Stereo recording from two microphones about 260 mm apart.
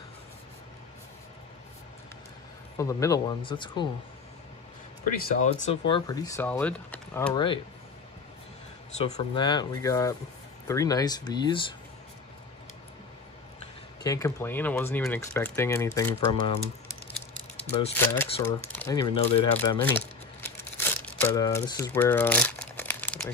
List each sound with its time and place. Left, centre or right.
2.8 s speech: centre
5.2 s speech: left; by 7.3 s centre
7.3 s speech: centre
8.9 s speech: left
14.0 s speech: centre
17.9 s speech: centre
19.8 s crumpling: centre